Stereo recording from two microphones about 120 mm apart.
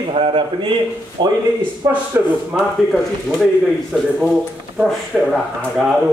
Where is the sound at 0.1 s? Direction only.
45° right (ahead or behind).